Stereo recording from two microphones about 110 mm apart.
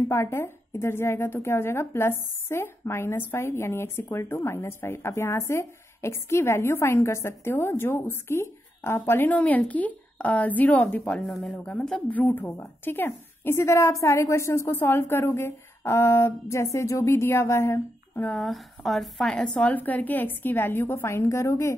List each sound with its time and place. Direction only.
0.1 s speech: 25° left (ahead or behind)
18.4 s a woman's voice: centre (ahead or behind); by 21.7 s 25° left (ahead or behind)